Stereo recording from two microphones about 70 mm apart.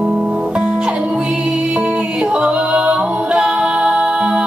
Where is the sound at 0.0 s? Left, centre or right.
Centre.